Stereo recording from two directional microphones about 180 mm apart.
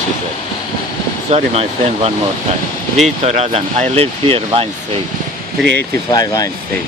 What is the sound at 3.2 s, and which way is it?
Speech, 35° right (ahead or behind).